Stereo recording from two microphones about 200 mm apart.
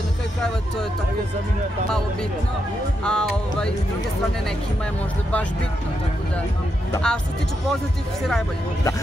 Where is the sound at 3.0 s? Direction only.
5° left (ahead or behind).